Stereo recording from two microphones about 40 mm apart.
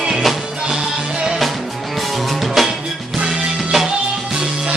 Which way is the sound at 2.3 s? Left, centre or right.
Centre.